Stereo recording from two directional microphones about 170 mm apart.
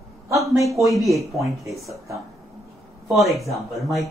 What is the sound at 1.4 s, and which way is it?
Speech, 20° right (ahead or behind).